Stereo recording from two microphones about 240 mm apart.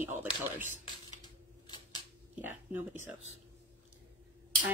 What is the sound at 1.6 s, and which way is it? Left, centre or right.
Scissors, centre.